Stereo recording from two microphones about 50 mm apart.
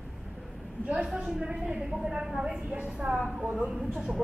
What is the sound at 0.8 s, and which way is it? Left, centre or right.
A woman's voice, right.